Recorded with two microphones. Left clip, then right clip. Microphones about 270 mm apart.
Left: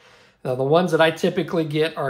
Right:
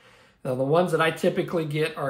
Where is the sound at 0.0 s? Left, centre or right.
Left.